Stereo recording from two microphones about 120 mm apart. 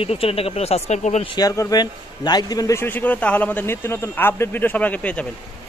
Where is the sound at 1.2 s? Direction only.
35° left (ahead or behind); by 5.2 s 10° left (ahead or behind).